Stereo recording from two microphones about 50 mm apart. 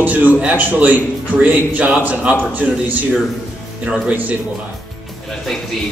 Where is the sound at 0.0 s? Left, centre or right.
Right.